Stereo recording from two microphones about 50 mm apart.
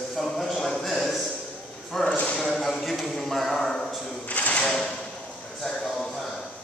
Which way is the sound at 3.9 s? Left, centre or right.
Centre.